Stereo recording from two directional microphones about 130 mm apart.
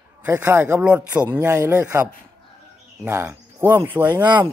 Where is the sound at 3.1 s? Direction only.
20° right (ahead or behind).